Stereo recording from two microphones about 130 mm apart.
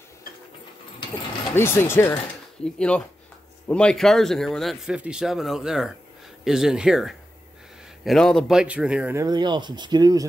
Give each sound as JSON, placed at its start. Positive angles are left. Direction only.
{"t": 1.5, "sound": "speech", "side_deg": 20}
{"t": 2.6, "sound": "a man's voice", "side_deg": 10}
{"t": 8.5, "sound": "speech", "side_deg": -10}
{"t": 9.1, "sound": "speech", "side_deg": -30}